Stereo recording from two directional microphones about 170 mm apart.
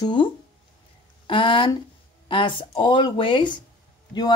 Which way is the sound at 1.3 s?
30° left (ahead or behind).